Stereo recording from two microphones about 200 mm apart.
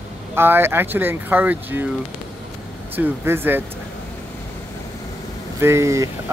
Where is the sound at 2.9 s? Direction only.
10° right (ahead or behind).